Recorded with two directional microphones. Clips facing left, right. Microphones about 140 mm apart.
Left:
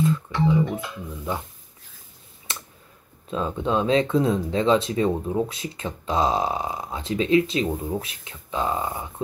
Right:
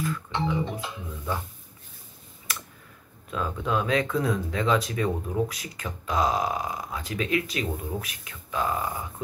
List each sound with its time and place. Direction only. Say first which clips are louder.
0.3 s music: left 6 dB; 25° right (ahead or behind)
2.5 s a sound: even; 25° left (ahead or behind)
3.3 s speech: left 4 dB; 25° left (ahead or behind)